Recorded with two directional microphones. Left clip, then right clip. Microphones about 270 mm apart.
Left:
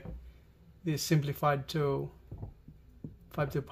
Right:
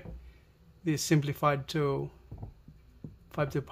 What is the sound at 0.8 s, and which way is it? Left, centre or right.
Speech, centre.